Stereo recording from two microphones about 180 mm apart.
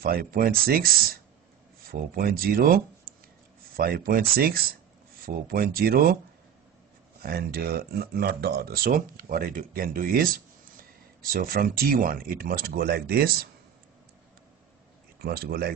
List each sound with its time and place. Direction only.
0.0 s speech: 55° right (ahead or behind)
7.2 s speech: 55° right (ahead or behind)
15.2 s speech: 55° right (ahead or behind)